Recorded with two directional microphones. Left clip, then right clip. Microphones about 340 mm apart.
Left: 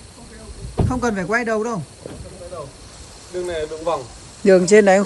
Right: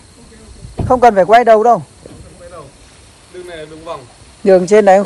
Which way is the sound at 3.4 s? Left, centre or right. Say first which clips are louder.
Left 5 dB; centre.